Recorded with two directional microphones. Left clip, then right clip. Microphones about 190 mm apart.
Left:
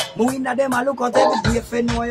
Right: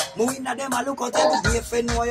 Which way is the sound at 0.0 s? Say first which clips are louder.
Left 3 dB; 15° left (ahead or behind).